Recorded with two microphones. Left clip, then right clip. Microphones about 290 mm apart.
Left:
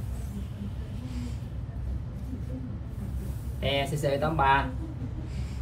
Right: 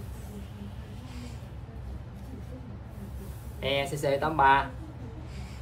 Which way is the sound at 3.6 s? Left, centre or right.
Centre.